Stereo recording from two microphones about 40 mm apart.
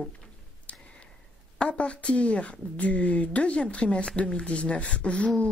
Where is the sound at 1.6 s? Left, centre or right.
Left.